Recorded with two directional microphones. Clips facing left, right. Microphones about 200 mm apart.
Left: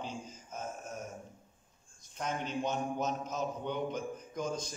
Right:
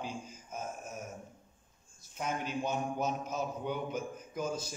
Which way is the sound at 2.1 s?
10° right (ahead or behind).